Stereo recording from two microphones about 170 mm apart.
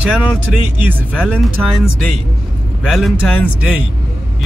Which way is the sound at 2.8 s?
Centre (ahead or behind).